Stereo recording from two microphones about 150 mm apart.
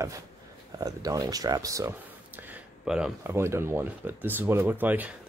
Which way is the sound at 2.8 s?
5° right (ahead or behind).